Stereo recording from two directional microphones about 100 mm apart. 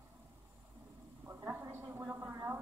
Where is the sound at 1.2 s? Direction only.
25° right (ahead or behind).